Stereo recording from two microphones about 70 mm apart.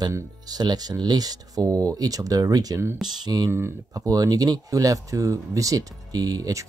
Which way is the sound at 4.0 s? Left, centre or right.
Right.